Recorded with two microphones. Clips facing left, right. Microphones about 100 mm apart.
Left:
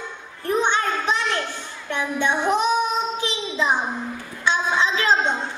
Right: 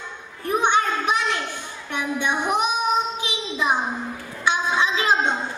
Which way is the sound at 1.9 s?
15° right (ahead or behind).